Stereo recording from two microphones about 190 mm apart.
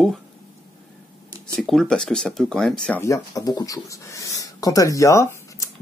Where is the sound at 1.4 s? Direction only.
Centre (ahead or behind).